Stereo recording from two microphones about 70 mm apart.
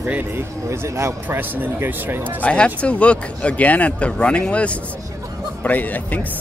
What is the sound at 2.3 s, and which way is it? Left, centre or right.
Speech, centre.